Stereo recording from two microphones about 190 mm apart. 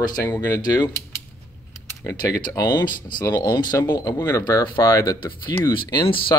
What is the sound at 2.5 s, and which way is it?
Speech, 20° left (ahead or behind).